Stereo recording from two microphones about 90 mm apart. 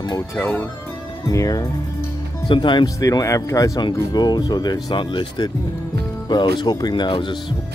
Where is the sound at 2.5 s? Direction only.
60° left (ahead or behind).